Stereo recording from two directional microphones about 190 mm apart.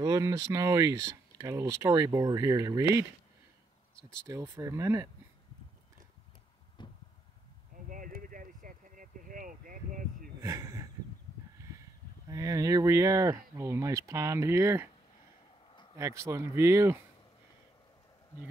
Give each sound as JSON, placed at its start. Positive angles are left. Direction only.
{"t": 0.0, "sound": "speech", "side_deg": -20}
{"t": 4.3, "sound": "speech", "side_deg": -15}
{"t": 6.8, "sound": "vehicle", "side_deg": 25}
{"t": 7.7, "sound": "a sound", "side_deg": -45}
{"t": 10.4, "sound": "a sound", "side_deg": -15}
{"t": 12.3, "sound": "speech", "side_deg": -20}
{"t": 16.0, "sound": "speech", "side_deg": -15}